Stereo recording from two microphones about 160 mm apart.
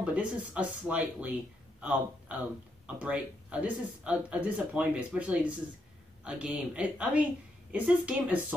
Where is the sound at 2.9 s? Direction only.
10° right (ahead or behind).